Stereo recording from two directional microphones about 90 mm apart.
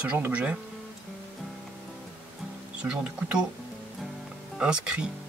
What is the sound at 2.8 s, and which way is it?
Speech, 10° right (ahead or behind).